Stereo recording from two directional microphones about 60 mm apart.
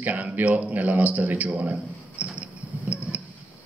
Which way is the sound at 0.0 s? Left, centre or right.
Right.